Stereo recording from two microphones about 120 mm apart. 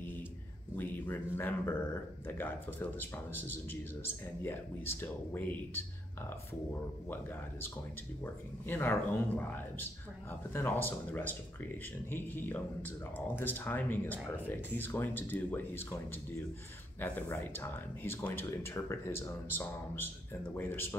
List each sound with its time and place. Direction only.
0.7 s speech: 15° left (ahead or behind)
8.6 s speech: 15° left (ahead or behind)
17.0 s speech: 15° left (ahead or behind)